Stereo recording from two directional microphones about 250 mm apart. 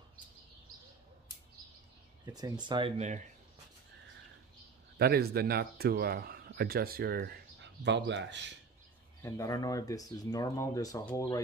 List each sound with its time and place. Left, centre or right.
2.3 s speech: centre
4.9 s speech: right
9.2 s speech: centre